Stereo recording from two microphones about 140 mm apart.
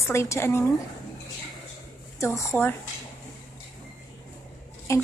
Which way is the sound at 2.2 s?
20° left (ahead or behind).